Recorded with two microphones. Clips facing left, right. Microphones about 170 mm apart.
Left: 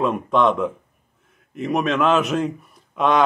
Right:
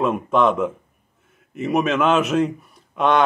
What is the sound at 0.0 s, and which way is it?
Speech, centre (ahead or behind).